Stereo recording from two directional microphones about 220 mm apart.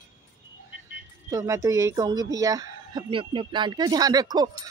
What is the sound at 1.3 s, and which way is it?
Speech, 15° right (ahead or behind).